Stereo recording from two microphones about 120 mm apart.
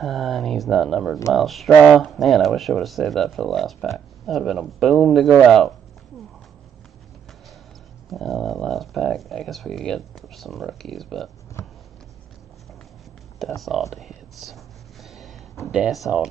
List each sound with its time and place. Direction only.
0.0 s speech: centre (ahead or behind)
8.1 s speech: centre (ahead or behind)
11.6 s a sound: 25° left (ahead or behind)
13.6 s speech: centre (ahead or behind)
15.0 s a sound: centre (ahead or behind)
15.6 s speech: 5° right (ahead or behind)